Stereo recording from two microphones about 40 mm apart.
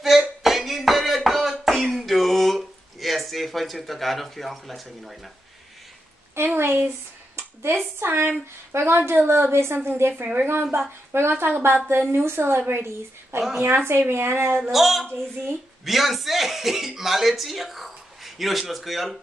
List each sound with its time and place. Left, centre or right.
0.0 s a sound: centre
6.3 s a woman's voice: right
8.1 s a woman's voice: right
9.8 s a woman's voice: right
10.3 s a woman's voice: right
12.1 s a woman's voice: right
14.6 s speech: centre